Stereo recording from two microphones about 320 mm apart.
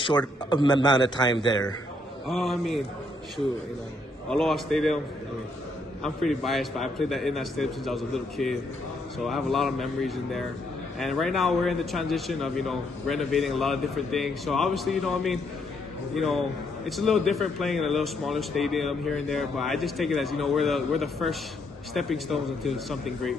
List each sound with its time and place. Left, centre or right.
0.5 s a man's voice: centre
2.2 s a man's voice: centre
4.3 s a man's voice: centre
6.0 s a man's voice: centre
16.8 s a man's voice: centre